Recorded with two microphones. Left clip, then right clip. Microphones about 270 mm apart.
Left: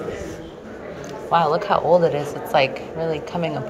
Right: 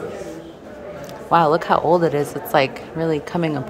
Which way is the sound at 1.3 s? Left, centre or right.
Right.